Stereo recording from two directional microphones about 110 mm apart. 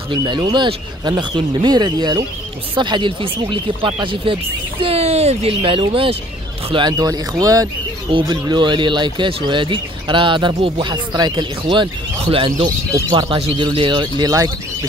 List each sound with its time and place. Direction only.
0.1 s speech: 40° right (ahead or behind); by 6.1 s 55° right (ahead or behind)
6.7 s speech: 40° right (ahead or behind)
8.1 s speech: 45° right (ahead or behind)
11.6 s speech: 50° right (ahead or behind)
13.1 s speech: 45° right (ahead or behind)
14.2 s speech: 30° right (ahead or behind)